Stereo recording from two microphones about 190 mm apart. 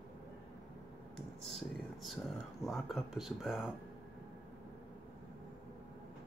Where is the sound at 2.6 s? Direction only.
Centre (ahead or behind).